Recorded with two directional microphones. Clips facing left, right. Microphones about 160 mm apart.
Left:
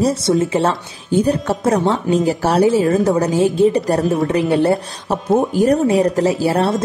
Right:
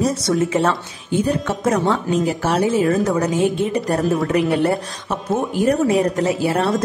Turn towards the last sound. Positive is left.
turn(degrees=35)  # may be behind; listen again after turning